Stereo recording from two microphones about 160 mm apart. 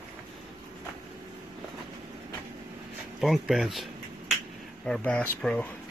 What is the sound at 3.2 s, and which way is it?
Speech, centre (ahead or behind).